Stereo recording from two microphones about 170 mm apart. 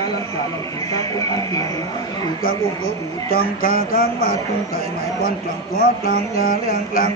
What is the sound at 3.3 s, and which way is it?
Speech, 60° left (ahead or behind).